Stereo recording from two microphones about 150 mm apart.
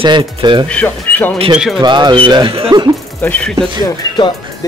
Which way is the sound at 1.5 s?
5° right (ahead or behind).